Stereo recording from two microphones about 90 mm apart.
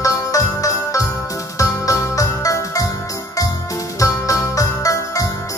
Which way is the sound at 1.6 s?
40° left (ahead or behind).